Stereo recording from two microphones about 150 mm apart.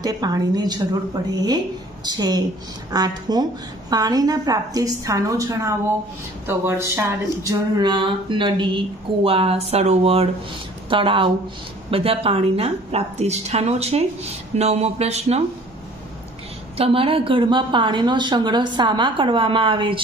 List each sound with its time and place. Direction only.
0.0 s a woman's voice: 25° right (ahead or behind); by 15.4 s 45° right (ahead or behind)
16.7 s speech: 40° right (ahead or behind)